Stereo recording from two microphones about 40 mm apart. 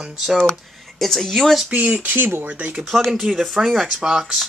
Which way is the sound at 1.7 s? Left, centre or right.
Right.